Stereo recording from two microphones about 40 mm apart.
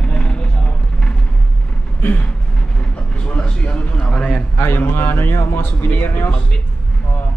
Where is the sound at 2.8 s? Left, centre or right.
Left.